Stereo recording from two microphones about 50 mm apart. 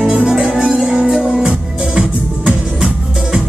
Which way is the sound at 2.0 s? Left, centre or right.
Right.